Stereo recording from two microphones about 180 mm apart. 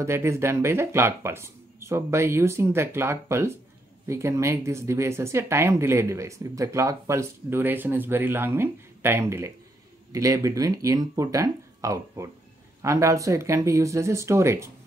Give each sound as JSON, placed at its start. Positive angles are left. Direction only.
{"t": 0.0, "sound": "speech", "side_deg": -15}